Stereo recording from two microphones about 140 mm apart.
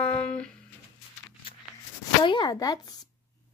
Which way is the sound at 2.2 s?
35° left (ahead or behind).